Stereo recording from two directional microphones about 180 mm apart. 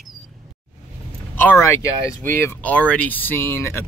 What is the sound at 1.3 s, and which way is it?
Speech, 10° left (ahead or behind).